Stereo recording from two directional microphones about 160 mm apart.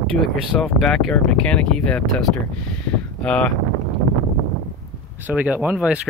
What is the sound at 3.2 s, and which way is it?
Speech, 5° left (ahead or behind).